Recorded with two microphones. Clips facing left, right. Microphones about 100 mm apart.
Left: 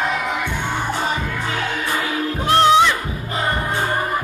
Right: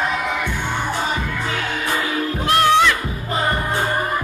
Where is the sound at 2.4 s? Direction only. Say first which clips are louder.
Left 2 dB; 20° left (ahead or behind).